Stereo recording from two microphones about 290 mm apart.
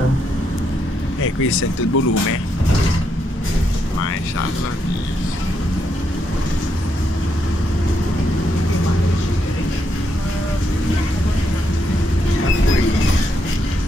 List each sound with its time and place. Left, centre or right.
1.2 s speech: left